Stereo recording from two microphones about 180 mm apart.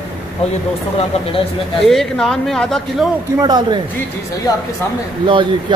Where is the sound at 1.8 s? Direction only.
Centre (ahead or behind).